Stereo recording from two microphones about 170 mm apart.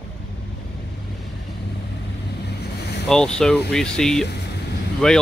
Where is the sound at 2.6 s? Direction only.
75° left (ahead or behind).